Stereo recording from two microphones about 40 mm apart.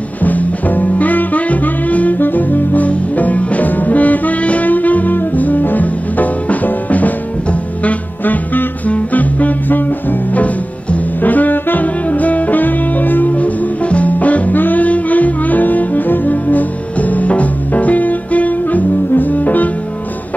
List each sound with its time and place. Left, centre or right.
0.2 s music: left
2.1 s saxophone: left
2.9 s music: left
14.5 s music: left